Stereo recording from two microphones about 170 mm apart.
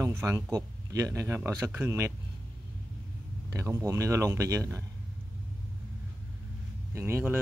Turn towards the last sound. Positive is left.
turn(degrees=-15)  # may be behind; listen again after turning